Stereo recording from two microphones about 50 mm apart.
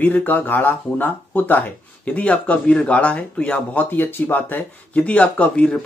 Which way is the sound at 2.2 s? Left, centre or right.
Left.